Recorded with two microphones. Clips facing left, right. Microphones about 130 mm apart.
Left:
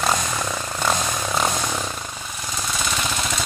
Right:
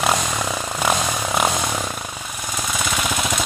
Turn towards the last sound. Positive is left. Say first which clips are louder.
# right 3 dB
turn(degrees=-10)  # may be behind; listen again after turning